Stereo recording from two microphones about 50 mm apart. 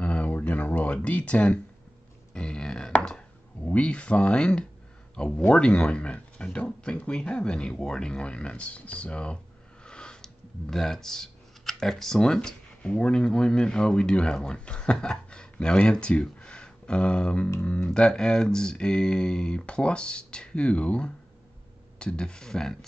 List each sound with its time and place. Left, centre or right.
0.0 s a sound: left
2.3 s speech: centre
9.8 s computer keyboard: centre
13.0 s speech: centre